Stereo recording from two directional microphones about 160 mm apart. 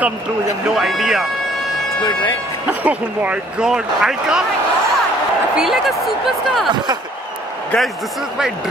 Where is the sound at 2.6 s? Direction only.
10° right (ahead or behind).